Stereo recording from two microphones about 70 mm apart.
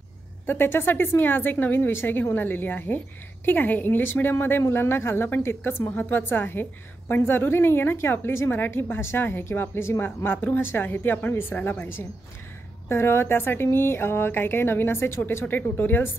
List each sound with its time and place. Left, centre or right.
0.5 s a woman's voice: left
12.8 s a woman's voice: left
15.4 s a woman's voice: left